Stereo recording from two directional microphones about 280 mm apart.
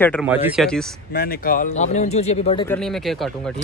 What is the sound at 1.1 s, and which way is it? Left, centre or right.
A man's voice, left.